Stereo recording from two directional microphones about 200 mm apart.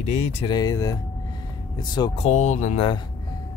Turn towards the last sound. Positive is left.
turn(degrees=25)  # may be behind; listen again after turning